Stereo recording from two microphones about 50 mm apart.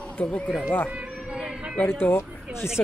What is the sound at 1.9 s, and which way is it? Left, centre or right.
Speech, left.